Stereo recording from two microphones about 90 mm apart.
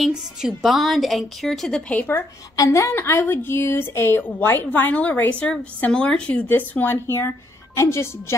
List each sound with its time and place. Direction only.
0.0 s a woman's voice: 5° right (ahead or behind); by 2.0 s 10° left (ahead or behind)
2.5 s a woman's voice: 35° left (ahead or behind)